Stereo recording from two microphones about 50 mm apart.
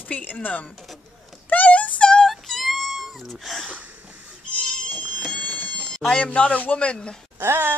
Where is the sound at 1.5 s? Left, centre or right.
Left.